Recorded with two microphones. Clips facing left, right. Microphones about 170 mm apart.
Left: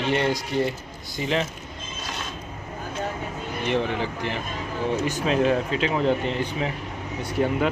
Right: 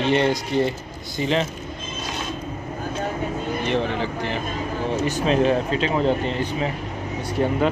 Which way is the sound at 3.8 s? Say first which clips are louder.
Right 2 dB; 15° left (ahead or behind).